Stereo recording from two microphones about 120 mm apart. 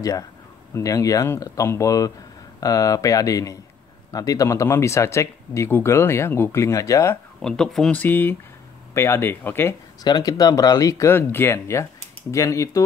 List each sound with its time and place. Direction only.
0.7 s speech: 30° left (ahead or behind)
7.4 s speech: 5° left (ahead or behind)
8.0 s speech: 15° left (ahead or behind)
10.0 s speech: 35° left (ahead or behind)